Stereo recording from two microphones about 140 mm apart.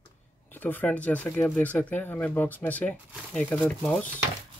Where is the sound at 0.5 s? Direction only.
15° left (ahead or behind).